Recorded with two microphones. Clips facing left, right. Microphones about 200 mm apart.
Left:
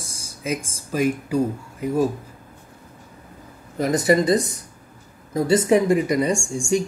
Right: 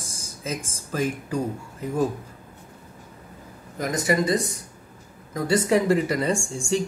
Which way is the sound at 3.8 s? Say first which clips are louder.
Left 5 dB; 35° left (ahead or behind).